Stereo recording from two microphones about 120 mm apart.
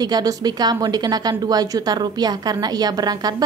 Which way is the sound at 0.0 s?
35° right (ahead or behind).